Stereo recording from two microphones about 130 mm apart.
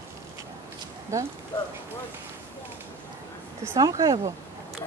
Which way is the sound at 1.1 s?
25° right (ahead or behind).